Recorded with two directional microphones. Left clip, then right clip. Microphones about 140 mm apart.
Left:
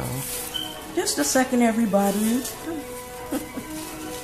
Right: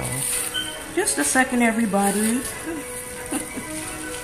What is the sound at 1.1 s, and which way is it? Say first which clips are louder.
Speech: even; 20° left (ahead or behind).